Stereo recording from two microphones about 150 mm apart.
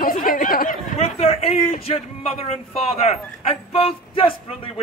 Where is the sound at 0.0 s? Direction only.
70° left (ahead or behind).